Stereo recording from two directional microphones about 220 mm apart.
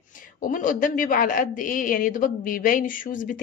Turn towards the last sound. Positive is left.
turn(degrees=40)  # may be behind; listen again after turning